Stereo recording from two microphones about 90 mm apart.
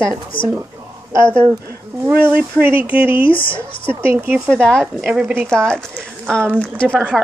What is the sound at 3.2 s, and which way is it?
Speech, 70° left (ahead or behind).